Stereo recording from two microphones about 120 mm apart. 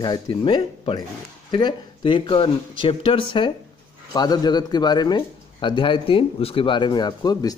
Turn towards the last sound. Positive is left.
turn(degrees=35)  # may be behind; listen again after turning